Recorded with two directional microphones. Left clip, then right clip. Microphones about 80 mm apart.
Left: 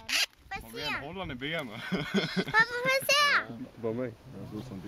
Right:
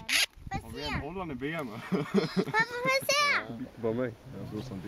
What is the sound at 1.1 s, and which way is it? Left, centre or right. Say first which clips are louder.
A child's voice: even; left.